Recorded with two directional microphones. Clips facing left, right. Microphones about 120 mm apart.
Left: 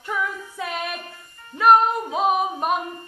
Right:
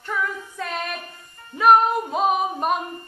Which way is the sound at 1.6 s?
Centre (ahead or behind).